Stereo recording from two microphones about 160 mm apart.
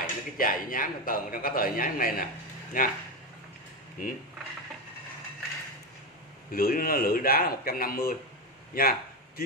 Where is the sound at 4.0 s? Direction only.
60° left (ahead or behind).